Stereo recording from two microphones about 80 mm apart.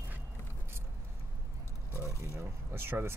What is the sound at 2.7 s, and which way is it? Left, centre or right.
Speech, right.